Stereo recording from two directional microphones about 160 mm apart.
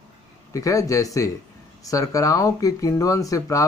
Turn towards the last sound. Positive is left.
turn(degrees=20)  # may be behind; listen again after turning